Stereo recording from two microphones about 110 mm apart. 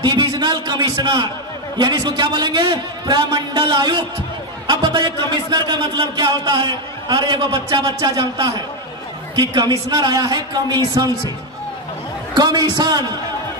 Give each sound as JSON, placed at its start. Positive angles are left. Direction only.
{"t": 0.0, "sound": "a man's voice", "side_deg": -40}
{"t": 12.4, "sound": "speech", "side_deg": -40}